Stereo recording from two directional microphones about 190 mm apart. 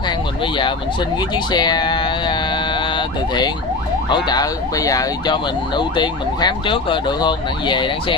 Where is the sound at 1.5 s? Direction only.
20° left (ahead or behind).